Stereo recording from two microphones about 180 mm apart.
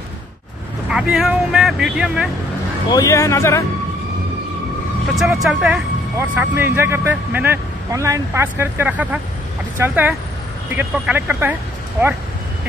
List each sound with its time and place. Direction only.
1.1 s speech: centre (ahead or behind)
2.9 s speech: 20° left (ahead or behind)
5.1 s speech: centre (ahead or behind)